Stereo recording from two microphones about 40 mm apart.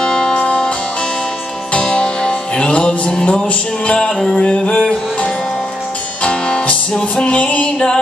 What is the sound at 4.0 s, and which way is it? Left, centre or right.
Music, centre.